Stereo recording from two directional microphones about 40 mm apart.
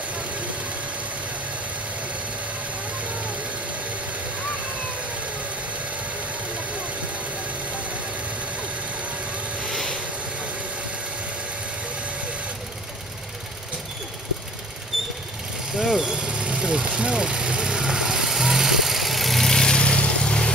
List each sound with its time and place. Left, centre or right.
9.7 s vehicle: centre
15.7 s vehicle: centre
19.5 s vehicle: centre